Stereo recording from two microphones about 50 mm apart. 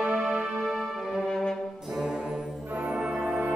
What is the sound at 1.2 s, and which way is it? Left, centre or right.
Brass instrument, centre.